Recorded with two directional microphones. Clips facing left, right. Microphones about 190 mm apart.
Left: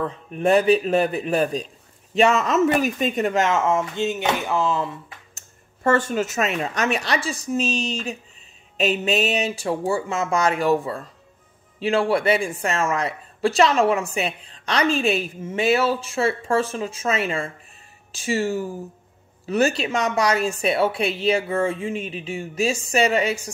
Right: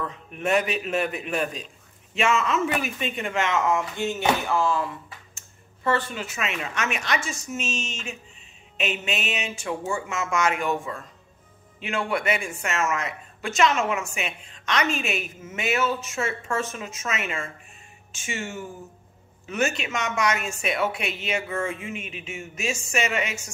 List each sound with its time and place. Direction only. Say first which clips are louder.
0.0 s a woman's voice: left 7 dB; 35° left (ahead or behind)
5.9 s a woman's voice: left 6 dB; 45° left (ahead or behind)